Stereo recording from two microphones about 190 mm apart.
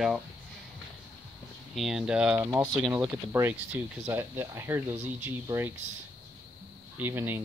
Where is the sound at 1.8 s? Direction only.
Centre (ahead or behind).